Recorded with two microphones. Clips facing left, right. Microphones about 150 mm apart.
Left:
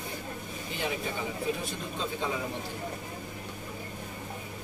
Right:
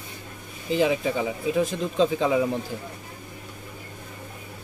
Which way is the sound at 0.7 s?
90° right.